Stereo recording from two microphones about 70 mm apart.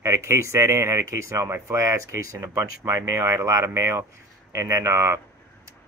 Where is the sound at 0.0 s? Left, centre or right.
Right.